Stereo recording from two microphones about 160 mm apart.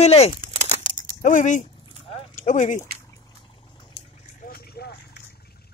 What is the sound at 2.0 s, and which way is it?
Clip-clop, 40° left (ahead or behind).